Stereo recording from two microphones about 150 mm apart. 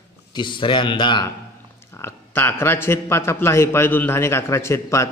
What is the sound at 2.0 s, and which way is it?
A man's voice, 15° left (ahead or behind).